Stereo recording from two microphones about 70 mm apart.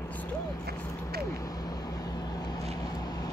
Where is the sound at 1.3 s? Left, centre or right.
Left.